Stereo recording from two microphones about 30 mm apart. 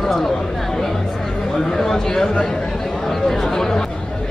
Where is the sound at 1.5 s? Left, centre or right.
Centre.